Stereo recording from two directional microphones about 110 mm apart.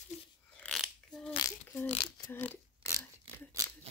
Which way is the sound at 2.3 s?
20° left (ahead or behind).